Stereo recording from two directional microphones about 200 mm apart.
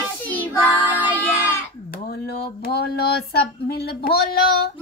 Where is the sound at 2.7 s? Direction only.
55° left (ahead or behind).